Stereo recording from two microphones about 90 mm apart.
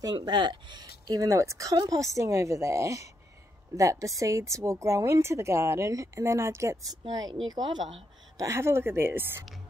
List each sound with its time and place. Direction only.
0.0 s a woman's voice: 50° right (ahead or behind)
8.4 s a woman's voice: 30° right (ahead or behind)